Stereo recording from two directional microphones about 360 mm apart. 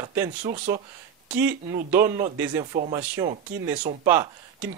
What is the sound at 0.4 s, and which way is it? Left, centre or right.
Speech, centre.